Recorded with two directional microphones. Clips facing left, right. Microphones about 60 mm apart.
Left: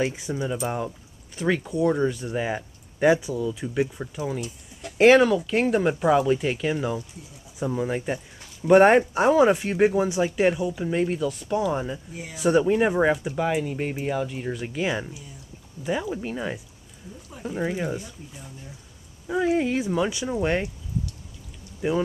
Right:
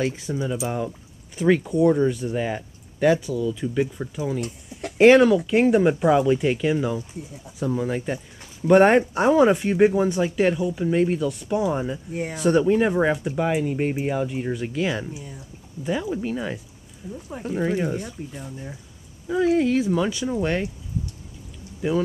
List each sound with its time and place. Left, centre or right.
0.0 s speech: centre
12.1 s speech: right
12.4 s speech: centre
13.5 s speech: centre
14.7 s speech: centre
19.2 s speech: centre
21.8 s speech: centre